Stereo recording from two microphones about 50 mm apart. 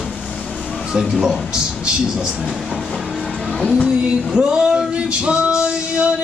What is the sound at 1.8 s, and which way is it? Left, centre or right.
Speech, centre.